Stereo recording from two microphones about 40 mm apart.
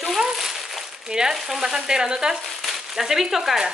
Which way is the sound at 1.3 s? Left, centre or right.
Centre.